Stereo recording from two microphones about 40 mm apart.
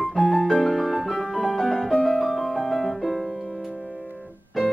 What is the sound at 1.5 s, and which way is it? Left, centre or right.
Music, centre.